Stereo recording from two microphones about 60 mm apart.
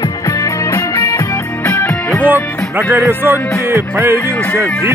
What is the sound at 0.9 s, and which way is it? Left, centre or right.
Music, left.